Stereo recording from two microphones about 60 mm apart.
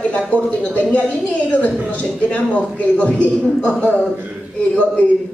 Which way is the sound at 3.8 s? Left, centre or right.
Left.